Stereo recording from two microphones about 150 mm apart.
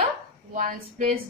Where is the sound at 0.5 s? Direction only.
60° right (ahead or behind).